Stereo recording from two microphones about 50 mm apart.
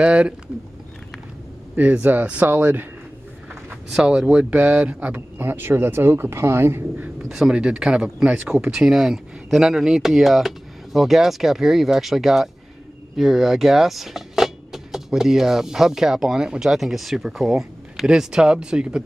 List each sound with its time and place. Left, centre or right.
0.0 s speech: right
1.8 s speech: right
3.9 s speech: centre
5.1 s speech: right
7.2 s speech: centre
8.8 s speech: centre
18.0 s speech: centre